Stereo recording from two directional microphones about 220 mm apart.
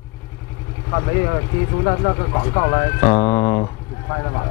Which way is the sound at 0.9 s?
20° left (ahead or behind).